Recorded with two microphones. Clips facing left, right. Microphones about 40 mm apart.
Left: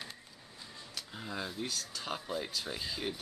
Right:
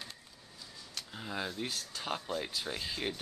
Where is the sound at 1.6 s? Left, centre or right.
Right.